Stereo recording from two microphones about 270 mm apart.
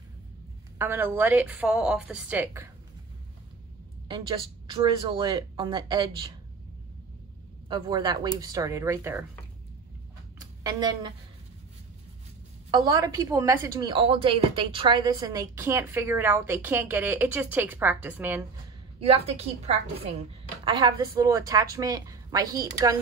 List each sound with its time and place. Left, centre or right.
0.7 s a woman's voice: centre
4.1 s a woman's voice: centre
7.6 s a woman's voice: centre
10.6 s a woman's voice: centre
12.7 s a woman's voice: centre
18.9 s a woman's voice: right